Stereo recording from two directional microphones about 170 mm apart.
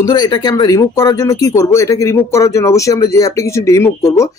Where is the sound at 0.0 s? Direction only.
25° left (ahead or behind).